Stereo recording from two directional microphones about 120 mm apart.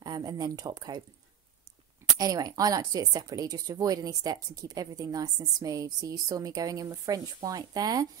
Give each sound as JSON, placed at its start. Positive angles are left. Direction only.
{"t": 0.0, "sound": "speech", "side_deg": -30}
{"t": 2.1, "sound": "speech", "side_deg": -30}